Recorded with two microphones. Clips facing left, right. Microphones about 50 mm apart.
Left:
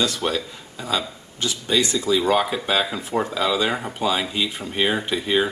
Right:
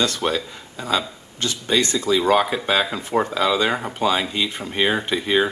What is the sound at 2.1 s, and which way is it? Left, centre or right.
Speech, centre.